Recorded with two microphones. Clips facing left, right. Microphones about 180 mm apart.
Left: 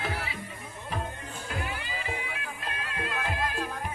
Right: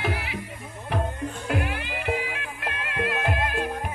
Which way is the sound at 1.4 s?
70° right (ahead or behind).